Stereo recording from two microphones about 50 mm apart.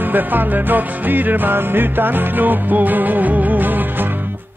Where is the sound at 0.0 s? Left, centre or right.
Right.